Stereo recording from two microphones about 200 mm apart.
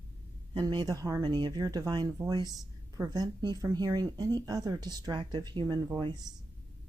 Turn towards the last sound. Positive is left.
turn(degrees=-20)  # may be behind; listen again after turning